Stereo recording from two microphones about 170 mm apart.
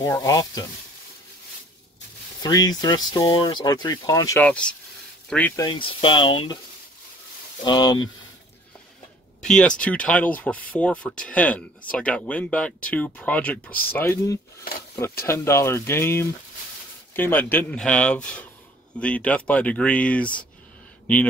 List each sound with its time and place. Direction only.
0.0 s speech: 20° left (ahead or behind)
2.4 s speech: 20° left (ahead or behind)
4.5 s speech: 5° left (ahead or behind)
5.6 s speech: 30° left (ahead or behind)
7.6 s speech: 25° left (ahead or behind)
9.4 s speech: 5° left (ahead or behind)